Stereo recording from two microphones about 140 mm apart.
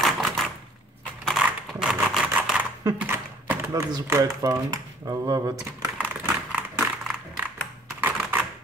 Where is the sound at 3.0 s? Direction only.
15° right (ahead or behind).